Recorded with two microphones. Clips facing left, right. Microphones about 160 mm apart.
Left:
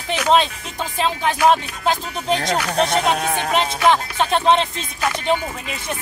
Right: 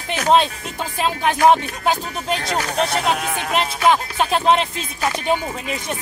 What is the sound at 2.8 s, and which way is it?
Speech, 35° left (ahead or behind).